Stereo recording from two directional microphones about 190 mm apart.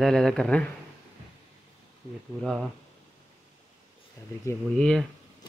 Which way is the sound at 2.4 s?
Centre (ahead or behind).